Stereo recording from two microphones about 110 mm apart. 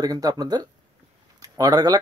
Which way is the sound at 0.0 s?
35° right (ahead or behind).